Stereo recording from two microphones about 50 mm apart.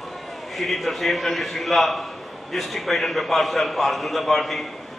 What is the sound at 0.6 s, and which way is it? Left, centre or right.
A man's voice, centre.